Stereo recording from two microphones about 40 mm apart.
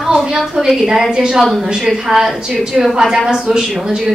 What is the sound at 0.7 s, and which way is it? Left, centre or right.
Speech, centre.